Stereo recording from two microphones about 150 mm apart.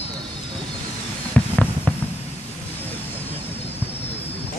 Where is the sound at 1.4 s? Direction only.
10° left (ahead or behind).